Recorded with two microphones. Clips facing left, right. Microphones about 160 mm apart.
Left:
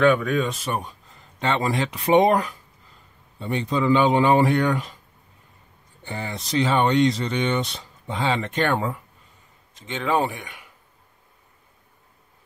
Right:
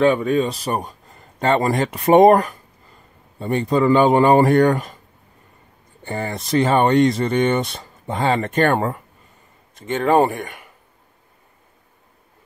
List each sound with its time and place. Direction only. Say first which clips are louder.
0.0 s speech: right 3 dB; 30° right (ahead or behind); by 4.9 s 50° right (ahead or behind)
6.0 s speech: right 6 dB; 50° right (ahead or behind)